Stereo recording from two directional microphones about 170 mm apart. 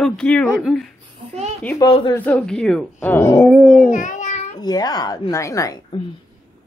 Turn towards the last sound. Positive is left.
turn(degrees=20)  # may be behind; listen again after turning